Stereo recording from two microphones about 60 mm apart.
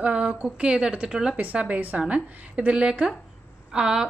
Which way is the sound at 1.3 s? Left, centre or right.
Right.